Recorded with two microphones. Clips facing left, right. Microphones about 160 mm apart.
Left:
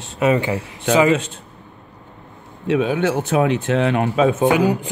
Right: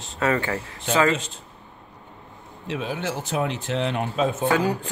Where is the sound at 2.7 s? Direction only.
60° left (ahead or behind).